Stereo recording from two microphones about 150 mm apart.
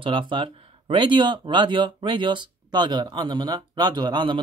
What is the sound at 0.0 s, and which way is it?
Speech, 35° right (ahead or behind).